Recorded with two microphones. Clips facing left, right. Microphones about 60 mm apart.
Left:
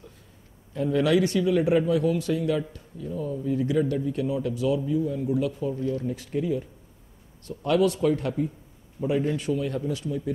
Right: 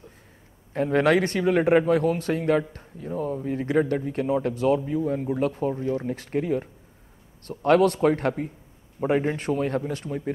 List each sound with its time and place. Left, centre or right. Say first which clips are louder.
0.7 s speech: right 2 dB; right